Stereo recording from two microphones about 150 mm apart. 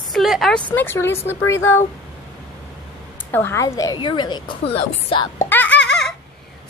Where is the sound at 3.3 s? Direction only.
15° left (ahead or behind); by 4.4 s 30° left (ahead or behind).